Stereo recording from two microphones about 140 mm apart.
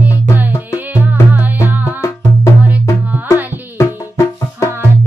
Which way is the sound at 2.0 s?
20° left (ahead or behind).